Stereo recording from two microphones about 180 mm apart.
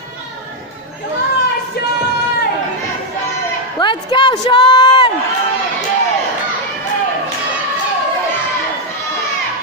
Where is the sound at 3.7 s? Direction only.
25° left (ahead or behind).